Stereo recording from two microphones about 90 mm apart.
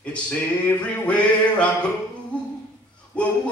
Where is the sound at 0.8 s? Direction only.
15° left (ahead or behind).